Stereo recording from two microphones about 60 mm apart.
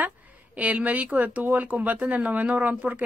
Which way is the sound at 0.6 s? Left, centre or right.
Right.